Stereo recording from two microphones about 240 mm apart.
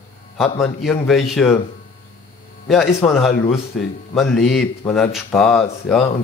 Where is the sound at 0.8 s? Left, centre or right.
Centre.